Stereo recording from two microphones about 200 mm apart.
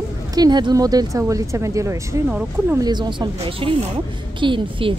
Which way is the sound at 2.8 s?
20° right (ahead or behind).